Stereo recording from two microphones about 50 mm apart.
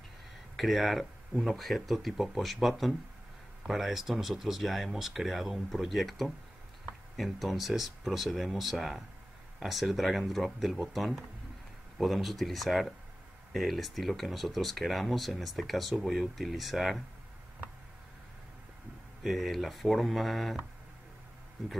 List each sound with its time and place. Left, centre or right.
0.6 s speech: centre
19.2 s speech: centre